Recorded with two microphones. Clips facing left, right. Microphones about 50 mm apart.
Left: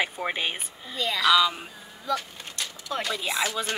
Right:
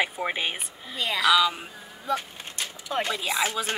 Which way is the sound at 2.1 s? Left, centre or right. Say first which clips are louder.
Even; right.